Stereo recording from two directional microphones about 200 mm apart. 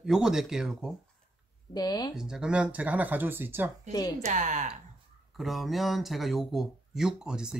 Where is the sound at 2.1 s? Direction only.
5° right (ahead or behind).